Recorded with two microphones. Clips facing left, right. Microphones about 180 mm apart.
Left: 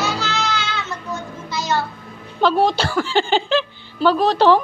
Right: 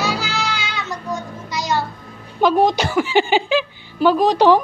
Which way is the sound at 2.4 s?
15° right (ahead or behind).